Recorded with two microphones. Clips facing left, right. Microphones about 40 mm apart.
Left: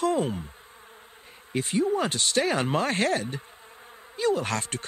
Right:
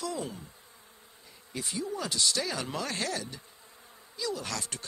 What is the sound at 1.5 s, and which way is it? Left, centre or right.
Speech, left.